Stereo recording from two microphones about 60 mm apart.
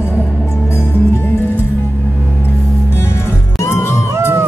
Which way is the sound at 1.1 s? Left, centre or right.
Left.